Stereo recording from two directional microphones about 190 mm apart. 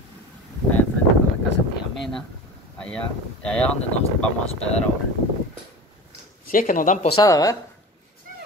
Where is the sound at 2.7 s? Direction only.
5° left (ahead or behind).